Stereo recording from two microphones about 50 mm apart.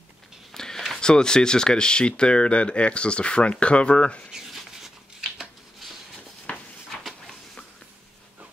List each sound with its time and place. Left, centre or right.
0.6 s speech: centre
4.3 s rub: centre
6.5 s a sound: centre